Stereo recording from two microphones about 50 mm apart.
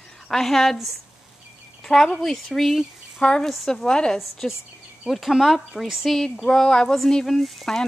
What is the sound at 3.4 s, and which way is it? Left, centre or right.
Speech, centre.